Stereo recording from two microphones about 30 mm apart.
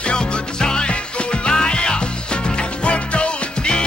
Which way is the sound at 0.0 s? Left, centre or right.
Left.